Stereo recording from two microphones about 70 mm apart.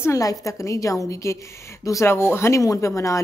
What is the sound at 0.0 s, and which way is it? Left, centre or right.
Speech, left.